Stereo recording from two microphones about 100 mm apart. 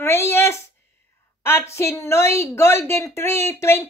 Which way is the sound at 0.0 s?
25° left (ahead or behind).